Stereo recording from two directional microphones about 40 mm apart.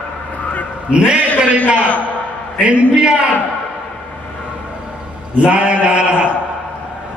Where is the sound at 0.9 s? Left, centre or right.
Right.